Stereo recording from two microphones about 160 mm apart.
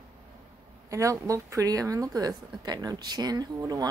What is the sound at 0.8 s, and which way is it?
Speech, 20° right (ahead or behind).